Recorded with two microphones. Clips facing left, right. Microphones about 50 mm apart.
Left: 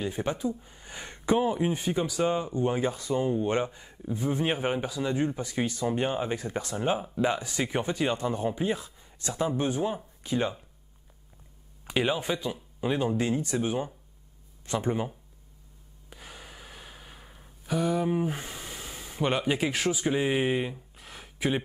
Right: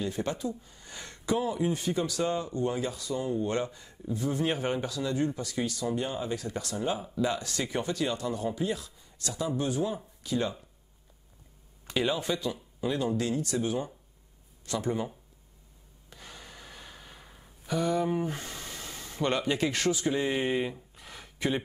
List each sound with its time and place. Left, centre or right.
0.0 s speech: left
1.7 s speech: left
2.7 s speech: left
11.8 s speech: centre
16.1 s gasp: centre